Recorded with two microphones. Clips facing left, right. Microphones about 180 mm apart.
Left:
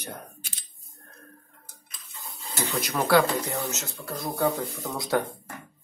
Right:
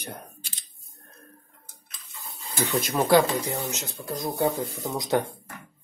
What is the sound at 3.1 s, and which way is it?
Speech, 20° right (ahead or behind).